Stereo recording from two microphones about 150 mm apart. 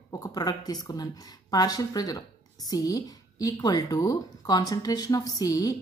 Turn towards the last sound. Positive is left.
turn(degrees=25)  # may be behind; listen again after turning